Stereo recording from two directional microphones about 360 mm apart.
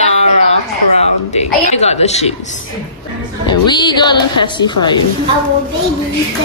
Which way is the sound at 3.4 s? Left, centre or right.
Centre.